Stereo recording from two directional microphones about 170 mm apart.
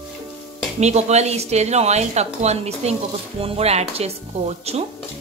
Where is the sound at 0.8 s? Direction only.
40° right (ahead or behind).